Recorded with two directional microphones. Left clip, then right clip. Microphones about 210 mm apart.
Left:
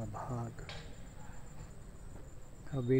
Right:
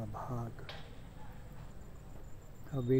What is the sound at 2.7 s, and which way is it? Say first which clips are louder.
Speech: even; centre (ahead or behind).